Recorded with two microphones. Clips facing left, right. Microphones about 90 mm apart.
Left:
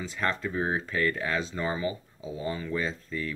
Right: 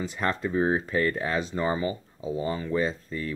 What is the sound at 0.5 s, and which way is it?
Speech, 20° right (ahead or behind).